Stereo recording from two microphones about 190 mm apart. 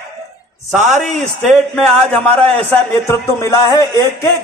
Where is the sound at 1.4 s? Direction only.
5° left (ahead or behind).